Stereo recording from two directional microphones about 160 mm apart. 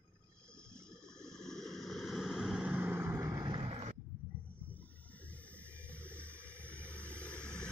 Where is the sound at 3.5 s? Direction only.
35° right (ahead or behind).